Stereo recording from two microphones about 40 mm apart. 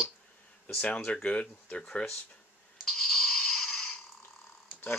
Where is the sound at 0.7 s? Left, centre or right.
Left.